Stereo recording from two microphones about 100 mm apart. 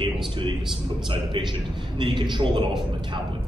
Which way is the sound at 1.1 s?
55° right (ahead or behind).